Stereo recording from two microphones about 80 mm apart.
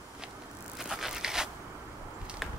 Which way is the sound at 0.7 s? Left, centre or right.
Centre.